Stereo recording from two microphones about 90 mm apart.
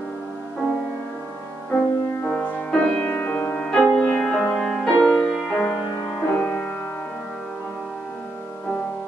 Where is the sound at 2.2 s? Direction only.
10° left (ahead or behind).